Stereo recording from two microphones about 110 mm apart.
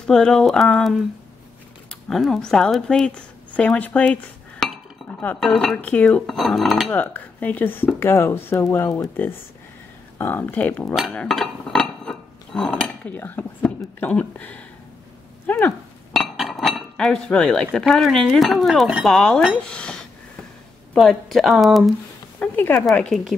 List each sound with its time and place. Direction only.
0.0 s speech: 5° left (ahead or behind)
5.2 s speech: 15° left (ahead or behind)
5.5 s speech: 5° left (ahead or behind)
6.9 s speech: 15° left (ahead or behind)
11.2 s dishes: 5° left (ahead or behind)
13.1 s speech: 20° left (ahead or behind)
16.2 s chink: centre (ahead or behind)
17.7 s speech: 5° left (ahead or behind)
22.4 s speech: 20° left (ahead or behind)
22.8 s speech: 5° left (ahead or behind)